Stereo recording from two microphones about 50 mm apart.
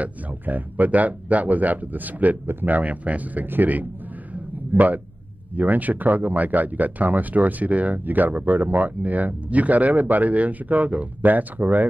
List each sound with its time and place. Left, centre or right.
0.0 s speech: right
4.3 s a sound: right
5.6 s speech: right